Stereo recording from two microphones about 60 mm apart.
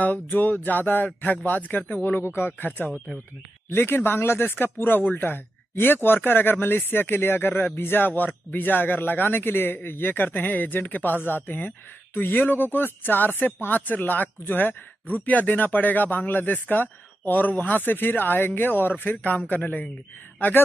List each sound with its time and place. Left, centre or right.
0.0 s speech: left
2.2 s speech: left